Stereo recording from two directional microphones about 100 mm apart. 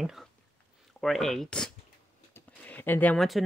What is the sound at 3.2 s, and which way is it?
Speech, centre (ahead or behind).